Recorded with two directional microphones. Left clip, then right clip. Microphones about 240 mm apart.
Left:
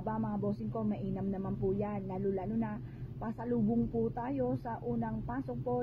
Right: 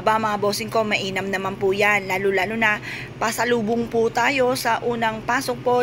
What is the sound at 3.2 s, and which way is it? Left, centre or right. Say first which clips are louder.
Speech: right 16 dB; centre.